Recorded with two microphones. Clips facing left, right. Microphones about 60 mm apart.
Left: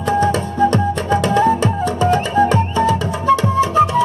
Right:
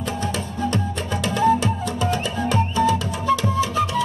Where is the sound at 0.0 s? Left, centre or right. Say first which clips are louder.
Left 10 dB; left.